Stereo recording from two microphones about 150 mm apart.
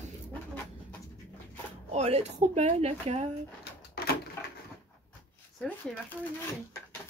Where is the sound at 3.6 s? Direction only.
90° left.